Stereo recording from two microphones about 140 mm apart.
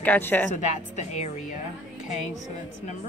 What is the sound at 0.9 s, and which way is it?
Speech, 55° left (ahead or behind).